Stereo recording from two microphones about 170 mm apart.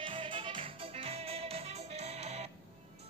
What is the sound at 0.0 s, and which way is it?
Music, 30° right (ahead or behind).